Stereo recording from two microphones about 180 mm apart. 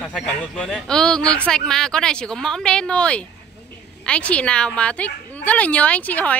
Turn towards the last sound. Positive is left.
turn(degrees=10)  # may be behind; listen again after turning